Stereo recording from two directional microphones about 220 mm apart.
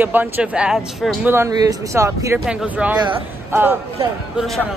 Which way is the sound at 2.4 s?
5° right (ahead or behind).